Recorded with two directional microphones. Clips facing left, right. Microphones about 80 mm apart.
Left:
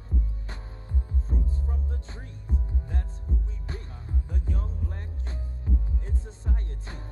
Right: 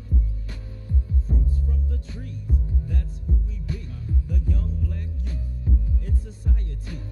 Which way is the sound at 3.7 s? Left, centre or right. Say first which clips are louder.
Right 8 dB; left.